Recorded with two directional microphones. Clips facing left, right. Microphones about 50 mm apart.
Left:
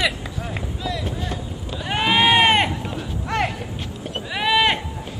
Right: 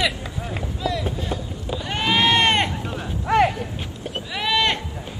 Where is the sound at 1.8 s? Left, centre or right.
Centre.